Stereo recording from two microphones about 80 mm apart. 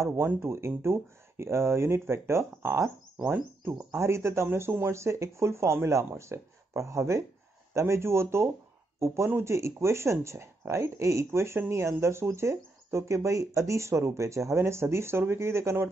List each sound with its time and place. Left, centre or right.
0.0 s speech: right